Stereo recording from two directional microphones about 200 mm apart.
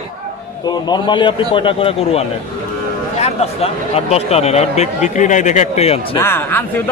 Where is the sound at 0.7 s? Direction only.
20° left (ahead or behind).